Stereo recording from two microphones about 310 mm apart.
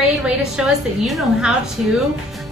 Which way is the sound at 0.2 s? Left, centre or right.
Centre.